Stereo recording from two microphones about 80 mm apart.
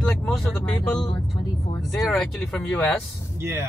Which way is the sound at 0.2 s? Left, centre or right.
Centre.